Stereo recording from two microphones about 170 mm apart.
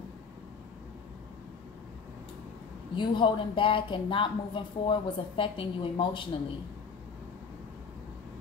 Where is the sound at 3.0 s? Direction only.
30° left (ahead or behind).